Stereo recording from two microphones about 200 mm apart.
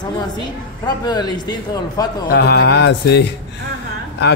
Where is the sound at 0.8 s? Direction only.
20° left (ahead or behind).